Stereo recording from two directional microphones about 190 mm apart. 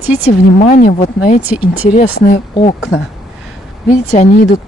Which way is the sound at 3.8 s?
45° left (ahead or behind).